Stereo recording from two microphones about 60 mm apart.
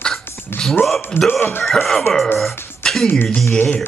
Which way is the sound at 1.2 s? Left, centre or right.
Left.